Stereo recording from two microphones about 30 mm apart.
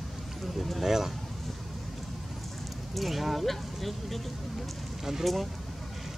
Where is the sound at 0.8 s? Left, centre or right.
Centre.